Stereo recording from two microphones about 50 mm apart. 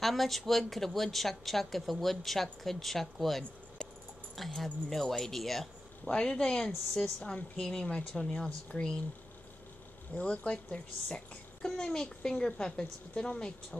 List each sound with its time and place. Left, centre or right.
0.0 s a woman's voice: centre
6.0 s a woman's voice: centre
10.1 s a woman's voice: left